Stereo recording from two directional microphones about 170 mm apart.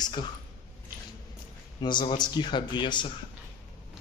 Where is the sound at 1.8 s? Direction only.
25° left (ahead or behind).